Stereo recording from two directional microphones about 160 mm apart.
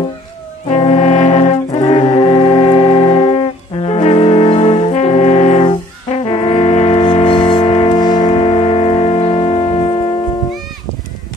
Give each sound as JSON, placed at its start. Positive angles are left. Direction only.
{"t": 0.7, "sound": "brass instrument", "side_deg": 40}
{"t": 7.9, "sound": "music", "side_deg": 25}